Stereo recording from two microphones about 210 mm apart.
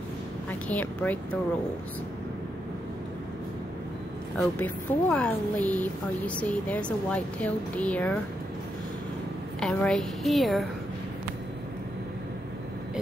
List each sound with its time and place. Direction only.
0.5 s speech: 10° left (ahead or behind)
4.4 s speech: 5° left (ahead or behind)
9.6 s a woman's voice: 5° left (ahead or behind)